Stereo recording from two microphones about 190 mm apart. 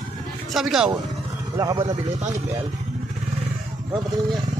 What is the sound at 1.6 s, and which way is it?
Speech, 20° right (ahead or behind).